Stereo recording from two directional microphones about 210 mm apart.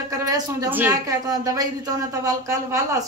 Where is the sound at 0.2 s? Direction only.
15° right (ahead or behind).